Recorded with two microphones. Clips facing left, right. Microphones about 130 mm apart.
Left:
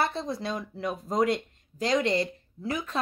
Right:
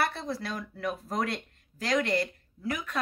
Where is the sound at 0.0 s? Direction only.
20° left (ahead or behind).